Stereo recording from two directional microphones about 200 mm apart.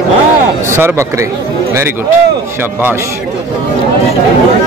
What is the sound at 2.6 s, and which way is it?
Speech, 10° right (ahead or behind).